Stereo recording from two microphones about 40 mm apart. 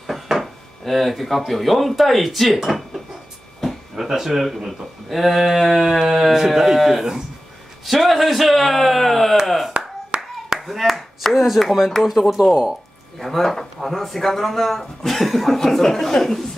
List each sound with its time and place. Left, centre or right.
0.1 s a sound: centre
0.8 s speech: centre
10.1 s clapping: right
10.8 s speech: centre
13.2 s speech: centre